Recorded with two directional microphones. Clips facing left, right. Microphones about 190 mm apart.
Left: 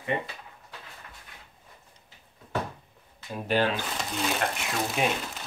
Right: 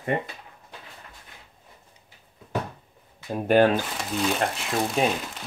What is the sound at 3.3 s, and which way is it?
Speech, 50° right (ahead or behind).